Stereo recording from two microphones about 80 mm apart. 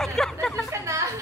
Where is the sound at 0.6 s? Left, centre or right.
Right.